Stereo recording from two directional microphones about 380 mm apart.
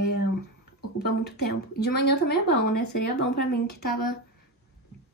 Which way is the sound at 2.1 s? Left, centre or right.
Left.